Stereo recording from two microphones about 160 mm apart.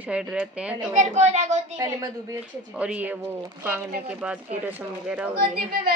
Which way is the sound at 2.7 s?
10° right (ahead or behind).